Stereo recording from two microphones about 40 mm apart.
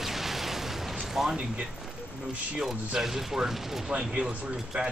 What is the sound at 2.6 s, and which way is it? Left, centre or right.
Speech, centre.